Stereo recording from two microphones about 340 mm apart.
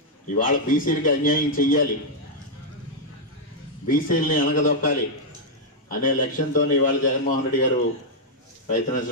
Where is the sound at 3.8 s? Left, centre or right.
Left.